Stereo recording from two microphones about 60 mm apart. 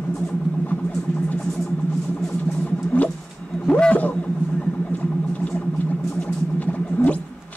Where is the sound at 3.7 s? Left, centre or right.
Centre.